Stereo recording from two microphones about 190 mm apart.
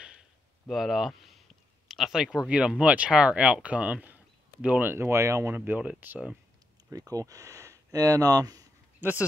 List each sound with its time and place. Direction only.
0.7 s speech: centre (ahead or behind)
6.9 s speech: 20° right (ahead or behind)